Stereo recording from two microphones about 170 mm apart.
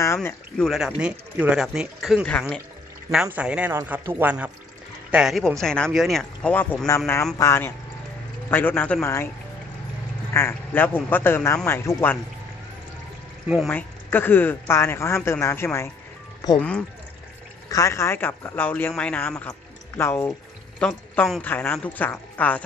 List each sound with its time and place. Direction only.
0.0 s speech: 15° left (ahead or behind)
0.6 s a man's voice: centre (ahead or behind)
10.3 s speech: 15° left (ahead or behind)
13.7 s speech: 10° left (ahead or behind)
17.6 s speech: 20° left (ahead or behind)